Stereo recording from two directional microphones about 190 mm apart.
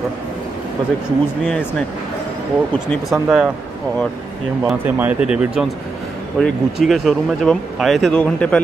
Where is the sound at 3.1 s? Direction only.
5° right (ahead or behind).